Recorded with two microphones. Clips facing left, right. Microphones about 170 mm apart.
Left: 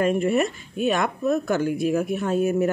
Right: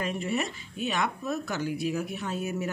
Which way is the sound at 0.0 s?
55° left (ahead or behind).